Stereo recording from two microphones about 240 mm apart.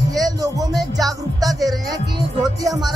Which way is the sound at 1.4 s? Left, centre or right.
Centre.